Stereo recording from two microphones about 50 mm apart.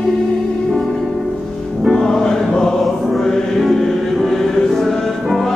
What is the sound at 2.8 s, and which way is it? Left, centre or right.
Music, centre.